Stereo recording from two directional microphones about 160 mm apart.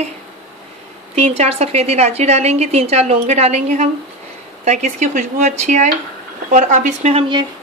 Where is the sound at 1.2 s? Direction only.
40° right (ahead or behind).